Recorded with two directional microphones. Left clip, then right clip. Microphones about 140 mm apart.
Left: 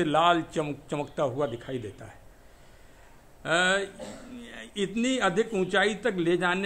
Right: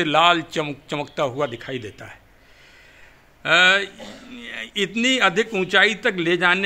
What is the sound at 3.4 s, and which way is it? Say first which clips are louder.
A man's voice: right 9 dB; 25° right (ahead or behind).